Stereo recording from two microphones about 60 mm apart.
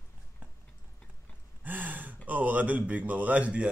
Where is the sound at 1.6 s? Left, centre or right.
Right.